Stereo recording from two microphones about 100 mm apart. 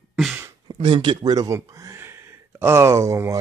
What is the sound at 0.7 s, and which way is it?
Speech, 65° right (ahead or behind).